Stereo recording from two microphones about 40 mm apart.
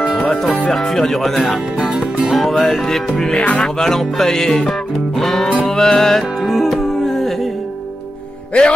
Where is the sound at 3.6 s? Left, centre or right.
Centre.